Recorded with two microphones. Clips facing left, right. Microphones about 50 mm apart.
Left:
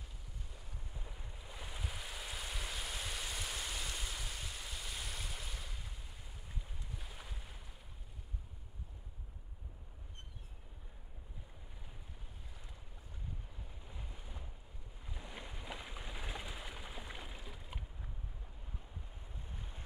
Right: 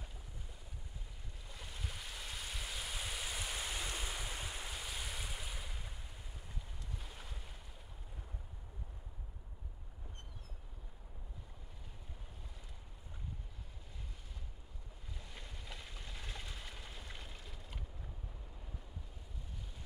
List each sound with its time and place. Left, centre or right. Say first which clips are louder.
1.0 s waves: left 3 dB; centre
4.9 s waves: right 1 dB; centre
7.0 s boat: even; centre
15.0 s a sound: left 4 dB; left